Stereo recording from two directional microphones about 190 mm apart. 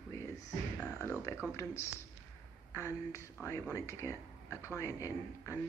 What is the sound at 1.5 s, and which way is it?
Speech, 15° left (ahead or behind).